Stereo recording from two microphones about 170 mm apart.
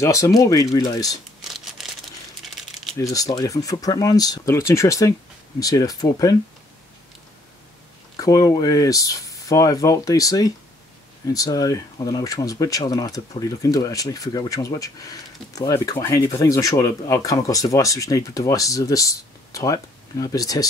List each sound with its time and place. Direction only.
0.0 s speech: 20° left (ahead or behind)
1.4 s a sound: centre (ahead or behind)
2.4 s crumpling: centre (ahead or behind)
3.0 s speech: 20° left (ahead or behind)
8.2 s speech: 20° left (ahead or behind)